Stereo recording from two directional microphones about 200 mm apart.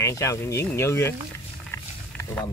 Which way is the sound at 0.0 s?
15° left (ahead or behind).